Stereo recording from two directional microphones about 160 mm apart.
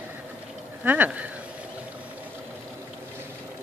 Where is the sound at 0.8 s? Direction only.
10° right (ahead or behind).